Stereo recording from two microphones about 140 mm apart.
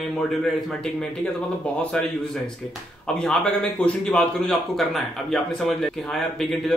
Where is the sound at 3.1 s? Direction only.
5° left (ahead or behind).